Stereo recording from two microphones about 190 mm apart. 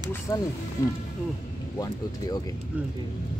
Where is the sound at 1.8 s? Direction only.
20° left (ahead or behind).